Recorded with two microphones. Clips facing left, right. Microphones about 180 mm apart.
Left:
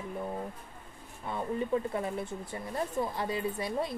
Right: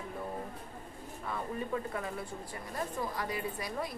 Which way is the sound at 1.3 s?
25° left (ahead or behind).